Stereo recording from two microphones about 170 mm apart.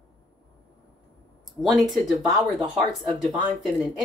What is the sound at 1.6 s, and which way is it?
A woman's voice, centre (ahead or behind).